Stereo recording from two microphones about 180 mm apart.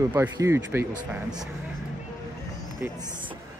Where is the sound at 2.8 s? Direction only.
10° right (ahead or behind).